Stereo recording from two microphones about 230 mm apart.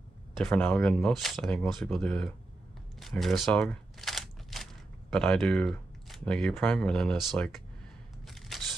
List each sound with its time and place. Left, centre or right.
0.4 s speech: centre
3.0 s a sound: centre
5.1 s speech: centre
8.3 s single-lens reflex camera: centre